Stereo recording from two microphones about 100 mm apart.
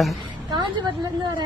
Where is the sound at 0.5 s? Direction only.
50° right (ahead or behind).